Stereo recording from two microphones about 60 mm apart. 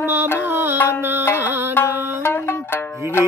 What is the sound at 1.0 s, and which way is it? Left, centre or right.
Music, right.